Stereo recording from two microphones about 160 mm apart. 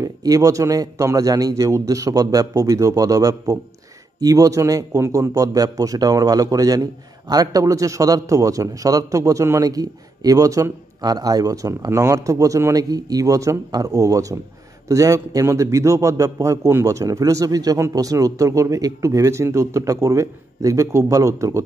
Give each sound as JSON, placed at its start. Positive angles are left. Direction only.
{"t": 0.0, "sound": "a man's voice", "side_deg": -20}